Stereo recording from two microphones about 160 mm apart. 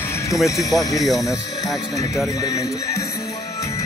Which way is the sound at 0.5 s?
20° left (ahead or behind).